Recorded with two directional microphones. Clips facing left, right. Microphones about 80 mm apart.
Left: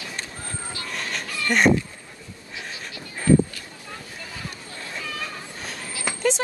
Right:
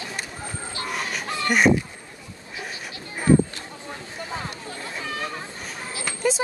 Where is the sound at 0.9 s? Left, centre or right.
Centre.